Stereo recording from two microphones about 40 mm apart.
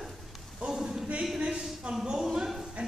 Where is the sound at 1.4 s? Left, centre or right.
Right.